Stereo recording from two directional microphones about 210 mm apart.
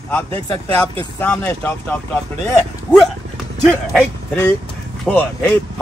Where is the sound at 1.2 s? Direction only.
10° left (ahead or behind).